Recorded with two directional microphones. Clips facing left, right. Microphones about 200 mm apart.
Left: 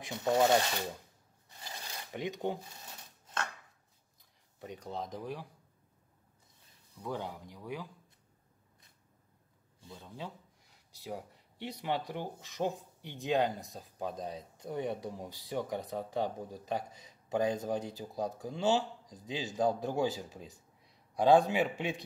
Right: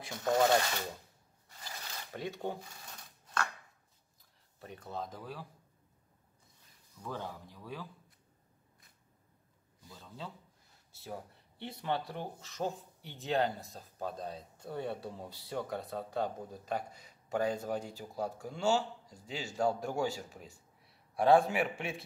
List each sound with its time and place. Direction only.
0.0 s speech: 15° left (ahead or behind)
1.6 s filing: 20° left (ahead or behind)
4.6 s speech: 15° left (ahead or behind)
7.0 s speech: 15° left (ahead or behind)
9.8 s speech: 20° left (ahead or behind)